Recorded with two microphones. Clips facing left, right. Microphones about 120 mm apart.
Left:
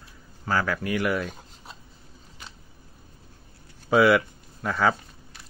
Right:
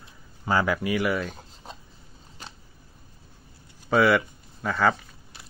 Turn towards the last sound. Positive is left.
turn(degrees=0)  # may be behind; listen again after turning